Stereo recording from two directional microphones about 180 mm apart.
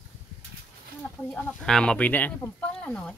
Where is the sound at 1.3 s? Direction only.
5° left (ahead or behind).